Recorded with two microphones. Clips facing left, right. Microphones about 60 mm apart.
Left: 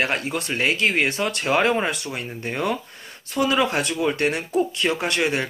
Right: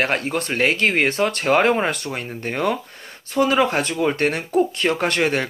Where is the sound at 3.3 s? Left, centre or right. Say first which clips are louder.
Right 3 dB; right.